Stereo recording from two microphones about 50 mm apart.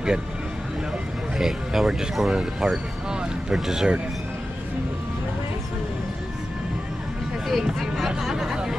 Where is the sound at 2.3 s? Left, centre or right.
Centre.